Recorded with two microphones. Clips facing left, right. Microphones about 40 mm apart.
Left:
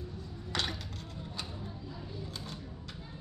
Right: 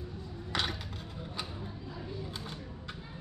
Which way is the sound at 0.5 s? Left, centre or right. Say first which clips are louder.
Right 1 dB; centre.